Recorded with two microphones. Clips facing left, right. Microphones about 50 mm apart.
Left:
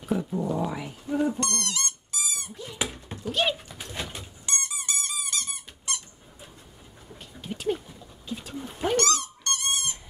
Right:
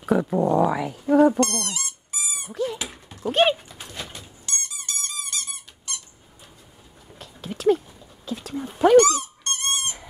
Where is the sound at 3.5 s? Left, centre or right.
Centre.